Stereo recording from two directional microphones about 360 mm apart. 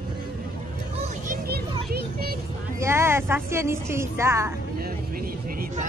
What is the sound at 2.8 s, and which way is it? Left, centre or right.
Speech, centre.